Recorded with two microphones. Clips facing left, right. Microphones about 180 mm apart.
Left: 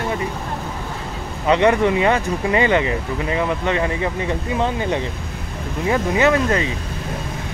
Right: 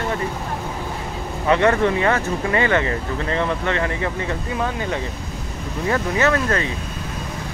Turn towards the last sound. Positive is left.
turn(degrees=15)  # may be behind; listen again after turning